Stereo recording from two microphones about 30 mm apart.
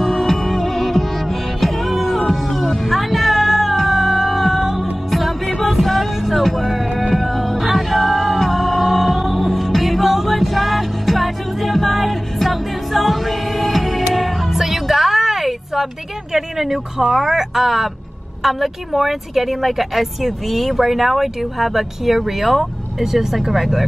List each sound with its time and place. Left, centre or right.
0.0 s music: centre
16.3 s speech: centre